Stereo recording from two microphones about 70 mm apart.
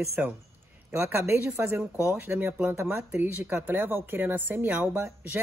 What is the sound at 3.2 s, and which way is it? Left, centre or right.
A woman's voice, right.